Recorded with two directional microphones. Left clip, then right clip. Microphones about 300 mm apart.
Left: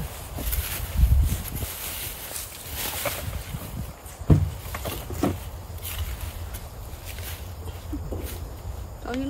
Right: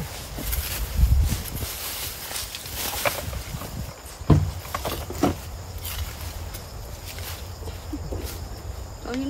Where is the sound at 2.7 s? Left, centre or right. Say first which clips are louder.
Right 4 dB; centre.